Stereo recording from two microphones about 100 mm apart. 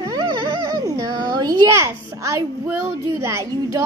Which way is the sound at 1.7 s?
30° right (ahead or behind).